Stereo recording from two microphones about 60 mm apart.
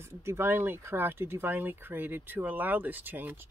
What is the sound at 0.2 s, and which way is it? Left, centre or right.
Speech, right.